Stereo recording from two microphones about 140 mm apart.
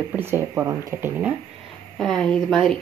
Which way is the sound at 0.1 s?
15° right (ahead or behind).